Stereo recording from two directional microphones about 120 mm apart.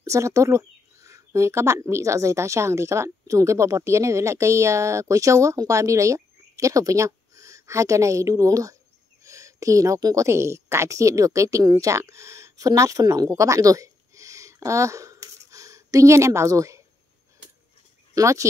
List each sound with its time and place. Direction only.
0.0 s a woman's voice: 25° right (ahead or behind)
18.1 s speech: 25° right (ahead or behind)